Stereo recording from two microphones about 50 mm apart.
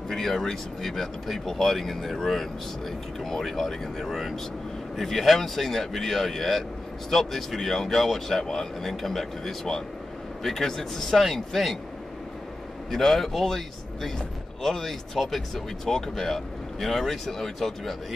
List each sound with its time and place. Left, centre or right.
0.1 s speech: centre
12.9 s speech: centre